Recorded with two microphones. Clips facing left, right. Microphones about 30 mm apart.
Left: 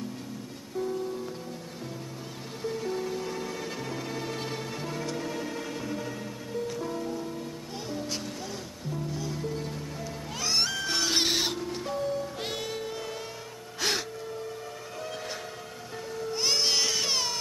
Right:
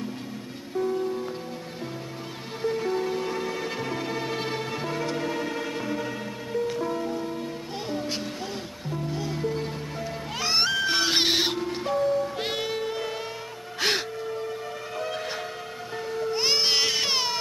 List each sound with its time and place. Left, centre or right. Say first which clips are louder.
0.7 s music: right 5 dB; right
2.6 s music: right 6 dB; right
12.4 s music: right 5 dB; right
16.1 s baby cry: right 4 dB; right